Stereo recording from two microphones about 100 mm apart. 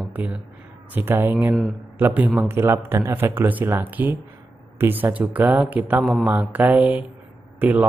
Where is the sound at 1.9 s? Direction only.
20° right (ahead or behind).